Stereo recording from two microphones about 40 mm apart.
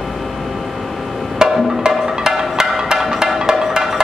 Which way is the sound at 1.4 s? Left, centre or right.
Centre.